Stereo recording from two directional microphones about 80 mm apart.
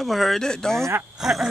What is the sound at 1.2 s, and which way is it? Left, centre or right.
Speech, centre.